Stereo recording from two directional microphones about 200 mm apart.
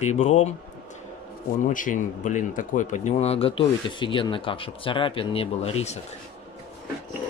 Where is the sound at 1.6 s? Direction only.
40° left (ahead or behind).